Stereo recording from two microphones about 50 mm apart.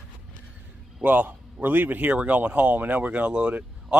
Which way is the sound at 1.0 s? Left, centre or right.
Right.